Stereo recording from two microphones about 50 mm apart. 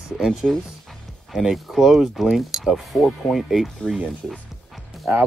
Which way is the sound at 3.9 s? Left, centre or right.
Centre.